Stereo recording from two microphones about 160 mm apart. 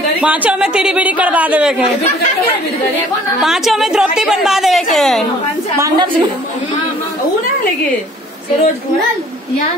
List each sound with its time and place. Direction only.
0.2 s speech: 10° right (ahead or behind)
3.3 s a woman's voice: centre (ahead or behind)
5.8 s a woman's voice: 30° right (ahead or behind)